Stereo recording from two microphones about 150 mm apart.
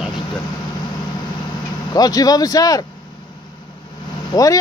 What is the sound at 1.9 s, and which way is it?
Speech, 25° left (ahead or behind).